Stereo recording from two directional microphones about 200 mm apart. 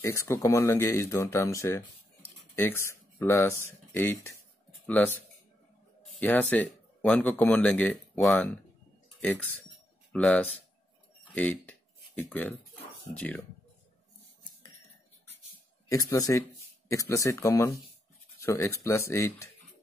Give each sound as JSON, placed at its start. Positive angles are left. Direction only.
{"t": 0.0, "sound": "speech", "side_deg": 15}
{"t": 6.1, "sound": "speech", "side_deg": 10}
{"t": 15.9, "sound": "speech", "side_deg": 15}